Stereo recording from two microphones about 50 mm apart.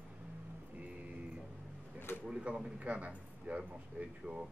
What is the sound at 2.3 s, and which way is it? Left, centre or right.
A man's voice, centre.